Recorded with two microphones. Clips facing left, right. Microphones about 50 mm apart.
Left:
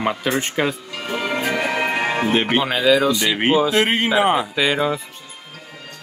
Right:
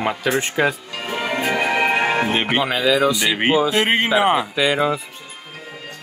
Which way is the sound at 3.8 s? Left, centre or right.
Right.